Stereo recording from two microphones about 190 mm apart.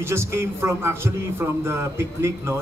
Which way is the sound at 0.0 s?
15° right (ahead or behind).